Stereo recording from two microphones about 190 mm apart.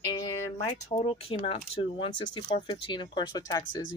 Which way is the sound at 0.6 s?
30° left (ahead or behind).